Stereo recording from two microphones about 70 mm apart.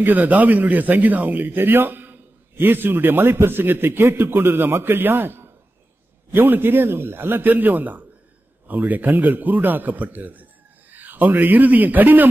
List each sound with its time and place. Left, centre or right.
0.0 s a man's voice: right